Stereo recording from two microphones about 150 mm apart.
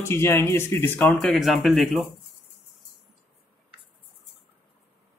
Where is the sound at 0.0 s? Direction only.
15° left (ahead or behind).